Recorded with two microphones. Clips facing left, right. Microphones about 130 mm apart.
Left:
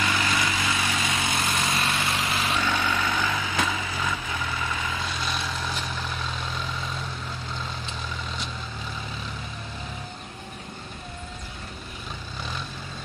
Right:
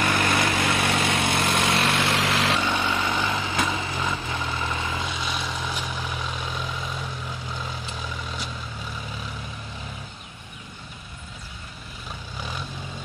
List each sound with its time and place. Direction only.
0.0 s vehicle: 55° right (ahead or behind); by 2.6 s 90° right
2.6 s a sound: 10° right (ahead or behind)
3.7 s vehicle: 25° right (ahead or behind); by 8.5 s 10° right (ahead or behind)